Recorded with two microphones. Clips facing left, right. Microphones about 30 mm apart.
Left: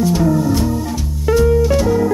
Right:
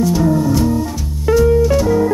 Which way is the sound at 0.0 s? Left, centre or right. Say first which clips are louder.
Right 1 dB; centre.